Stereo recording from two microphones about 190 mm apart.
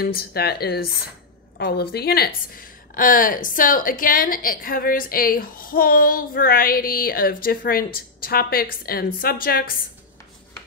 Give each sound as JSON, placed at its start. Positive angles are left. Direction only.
{"t": 0.0, "sound": "a woman's voice", "side_deg": 55}